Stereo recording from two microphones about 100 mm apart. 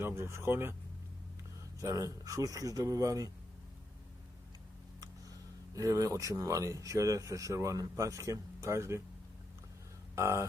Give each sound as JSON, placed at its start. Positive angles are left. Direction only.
{"t": 0.0, "sound": "speech", "side_deg": -25}
{"t": 1.8, "sound": "speech", "side_deg": -35}
{"t": 5.8, "sound": "speech", "side_deg": -35}
{"t": 10.1, "sound": "speech", "side_deg": -25}